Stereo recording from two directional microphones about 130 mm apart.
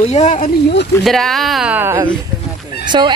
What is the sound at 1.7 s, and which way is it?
Speech, 20° right (ahead or behind).